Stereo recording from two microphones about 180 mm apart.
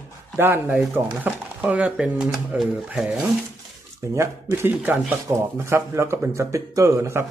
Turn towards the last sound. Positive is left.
turn(degrees=-15)  # may be behind; listen again after turning